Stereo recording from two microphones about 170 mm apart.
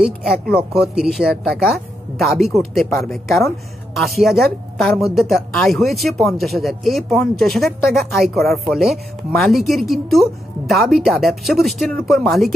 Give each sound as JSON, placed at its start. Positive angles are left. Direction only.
{"t": 0.0, "sound": "speech", "side_deg": -5}
{"t": 3.3, "sound": "speech", "side_deg": 15}
{"t": 3.9, "sound": "speech", "side_deg": 0}